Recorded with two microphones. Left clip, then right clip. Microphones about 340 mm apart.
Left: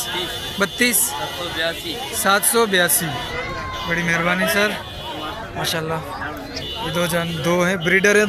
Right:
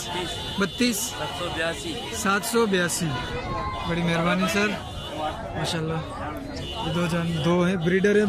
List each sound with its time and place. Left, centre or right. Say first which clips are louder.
0.6 s speech: left 7 dB; centre
2.2 s speech: left 6 dB; centre
6.9 s speech: left 7 dB; centre